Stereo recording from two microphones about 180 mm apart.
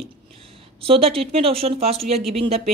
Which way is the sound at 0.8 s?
30° right (ahead or behind).